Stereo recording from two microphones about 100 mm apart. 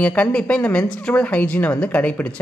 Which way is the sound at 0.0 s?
15° left (ahead or behind).